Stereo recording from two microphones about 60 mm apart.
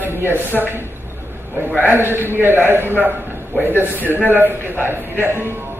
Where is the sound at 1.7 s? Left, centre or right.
Right.